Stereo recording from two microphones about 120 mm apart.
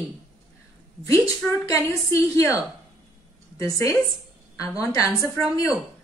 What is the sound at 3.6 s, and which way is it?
A woman's voice, 25° left (ahead or behind).